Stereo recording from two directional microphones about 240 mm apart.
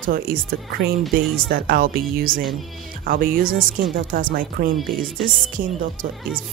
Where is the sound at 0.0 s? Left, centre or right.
Right.